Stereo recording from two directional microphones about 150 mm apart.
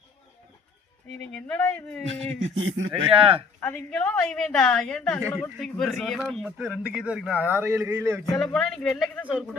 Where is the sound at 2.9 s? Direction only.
40° right (ahead or behind).